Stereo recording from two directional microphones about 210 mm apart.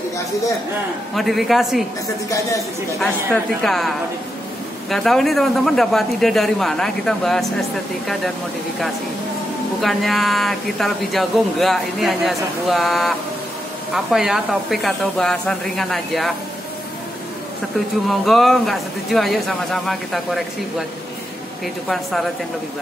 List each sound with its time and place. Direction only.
1.1 s speech: centre (ahead or behind)
2.2 s speech: 15° left (ahead or behind)
3.6 s speech: centre (ahead or behind)
9.8 s speech: centre (ahead or behind)
18.0 s speech: centre (ahead or behind)
21.8 s speech: centre (ahead or behind)